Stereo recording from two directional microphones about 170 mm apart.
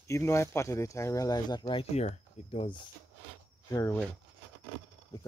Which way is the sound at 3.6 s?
15° left (ahead or behind).